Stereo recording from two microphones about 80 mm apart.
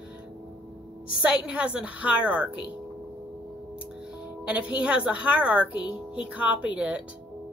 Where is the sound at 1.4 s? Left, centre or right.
Centre.